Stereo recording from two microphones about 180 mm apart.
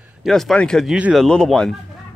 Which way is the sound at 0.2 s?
Centre (ahead or behind).